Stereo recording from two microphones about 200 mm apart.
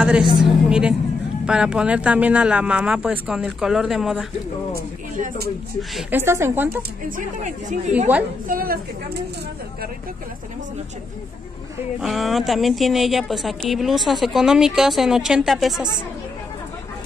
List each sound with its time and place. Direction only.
0.0 s a woman's voice: 5° right (ahead or behind)
4.7 s speech: 40° right (ahead or behind)
5.8 s a woman's voice: 5° right (ahead or behind)
8.5 s a woman's voice: 45° right (ahead or behind)
12.0 s a woman's voice: centre (ahead or behind)